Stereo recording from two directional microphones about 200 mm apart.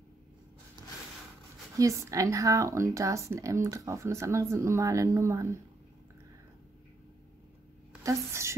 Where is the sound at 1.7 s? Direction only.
15° right (ahead or behind).